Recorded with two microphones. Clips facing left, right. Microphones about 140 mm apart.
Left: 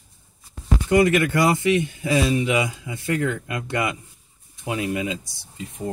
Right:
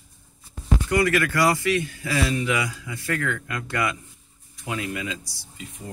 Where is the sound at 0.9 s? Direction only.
20° left (ahead or behind).